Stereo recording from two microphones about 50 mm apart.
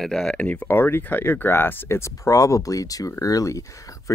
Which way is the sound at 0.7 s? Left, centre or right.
Left.